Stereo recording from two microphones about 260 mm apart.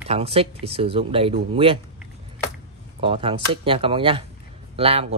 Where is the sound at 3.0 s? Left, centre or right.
Right.